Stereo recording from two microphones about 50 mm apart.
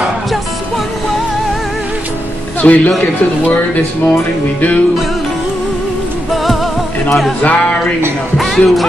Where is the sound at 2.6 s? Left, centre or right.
Left.